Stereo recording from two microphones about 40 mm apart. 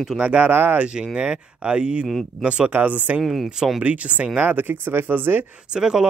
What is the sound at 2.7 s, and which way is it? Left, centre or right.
Speech, right.